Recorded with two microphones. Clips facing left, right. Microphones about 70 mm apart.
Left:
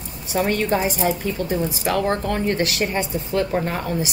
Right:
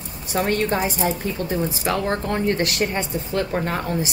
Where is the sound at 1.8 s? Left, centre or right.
Right.